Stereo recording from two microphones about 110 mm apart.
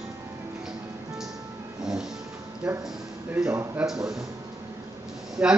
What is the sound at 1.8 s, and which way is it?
Music, 5° right (ahead or behind).